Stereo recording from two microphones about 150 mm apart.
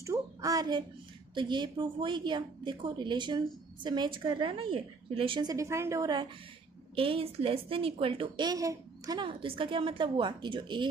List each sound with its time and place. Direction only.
0.0 s a sound: 20° right (ahead or behind)
1.3 s a woman's voice: 30° right (ahead or behind)
7.0 s a woman's voice: 35° right (ahead or behind)